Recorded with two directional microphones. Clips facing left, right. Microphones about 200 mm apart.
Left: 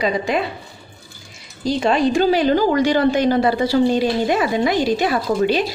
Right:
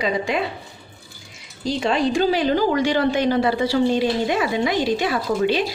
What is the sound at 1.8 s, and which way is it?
A woman's voice, 45° left (ahead or behind).